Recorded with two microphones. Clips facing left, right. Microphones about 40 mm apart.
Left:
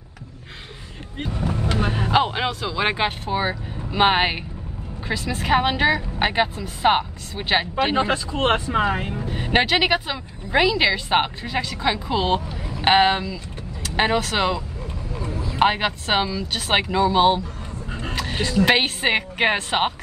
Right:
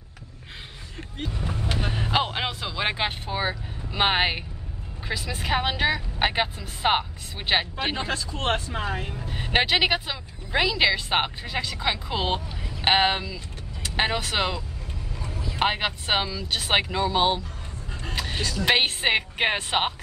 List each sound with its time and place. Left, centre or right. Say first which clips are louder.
1.8 s a sound: left 5 dB; centre
2.8 s speech: left 4 dB; centre
7.9 s speech: left 8 dB; left
9.3 s speech: left 3 dB; centre
15.1 s vehicle: left 5 dB; left
15.6 s speech: left 5 dB; centre
18.4 s speech: left 11 dB; left
18.7 s speech: right 1 dB; centre